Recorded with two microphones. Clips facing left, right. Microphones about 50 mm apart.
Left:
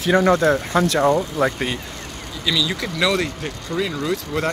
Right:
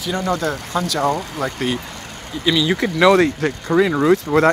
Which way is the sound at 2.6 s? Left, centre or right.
Right.